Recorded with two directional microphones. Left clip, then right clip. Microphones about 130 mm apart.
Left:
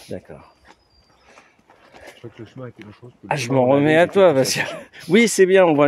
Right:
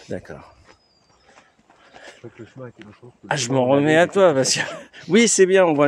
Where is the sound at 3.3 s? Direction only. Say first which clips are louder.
Left 2 dB; 5° left (ahead or behind).